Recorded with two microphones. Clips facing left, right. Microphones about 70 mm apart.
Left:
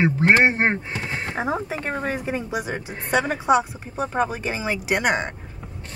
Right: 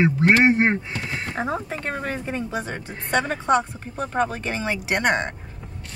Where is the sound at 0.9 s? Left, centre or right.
Left.